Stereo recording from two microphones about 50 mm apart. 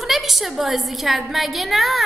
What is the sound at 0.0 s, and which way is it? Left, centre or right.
A woman's voice, centre.